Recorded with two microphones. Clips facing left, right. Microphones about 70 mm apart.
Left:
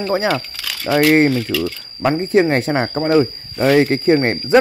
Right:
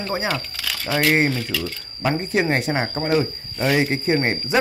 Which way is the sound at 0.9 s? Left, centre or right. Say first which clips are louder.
Left 6 dB; centre.